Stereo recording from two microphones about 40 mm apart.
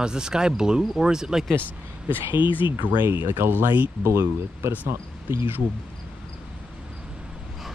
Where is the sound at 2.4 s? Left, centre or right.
Right.